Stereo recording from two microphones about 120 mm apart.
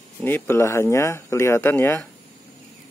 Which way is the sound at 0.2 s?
15° left (ahead or behind).